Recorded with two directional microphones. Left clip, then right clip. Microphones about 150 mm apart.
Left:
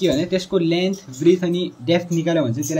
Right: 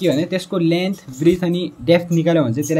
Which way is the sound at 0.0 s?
35° right (ahead or behind).